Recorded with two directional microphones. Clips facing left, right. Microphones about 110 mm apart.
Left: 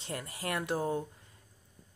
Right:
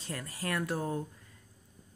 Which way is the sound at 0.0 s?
20° left (ahead or behind).